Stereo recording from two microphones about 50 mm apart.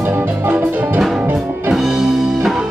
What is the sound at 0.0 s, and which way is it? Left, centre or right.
Music, right.